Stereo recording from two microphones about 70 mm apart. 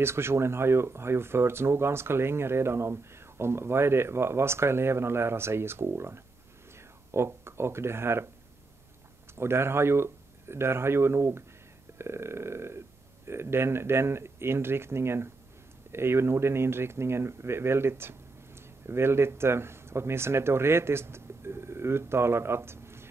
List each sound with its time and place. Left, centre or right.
0.0 s speech: right
9.3 s speech: right